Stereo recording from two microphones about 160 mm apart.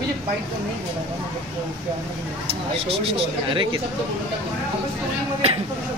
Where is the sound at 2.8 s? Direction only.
35° right (ahead or behind).